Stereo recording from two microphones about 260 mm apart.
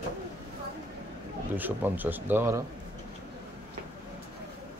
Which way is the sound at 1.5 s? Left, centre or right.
Centre.